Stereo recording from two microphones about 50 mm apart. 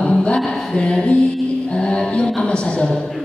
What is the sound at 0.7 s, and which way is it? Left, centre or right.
A woman's voice, left.